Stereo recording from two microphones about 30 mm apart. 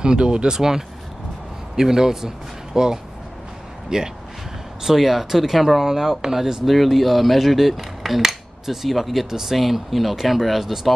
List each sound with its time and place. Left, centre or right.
0.0 s speech: right
4.8 s speech: centre
6.6 s speech: centre
8.2 s a sound: centre
9.6 s speech: centre